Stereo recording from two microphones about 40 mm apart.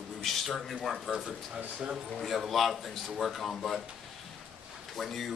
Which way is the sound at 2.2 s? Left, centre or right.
Centre.